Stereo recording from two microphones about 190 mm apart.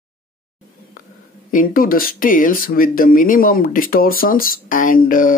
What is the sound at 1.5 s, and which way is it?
Speech, 45° left (ahead or behind).